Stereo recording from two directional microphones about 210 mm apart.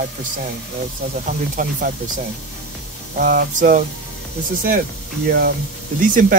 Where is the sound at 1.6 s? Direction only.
40° right (ahead or behind).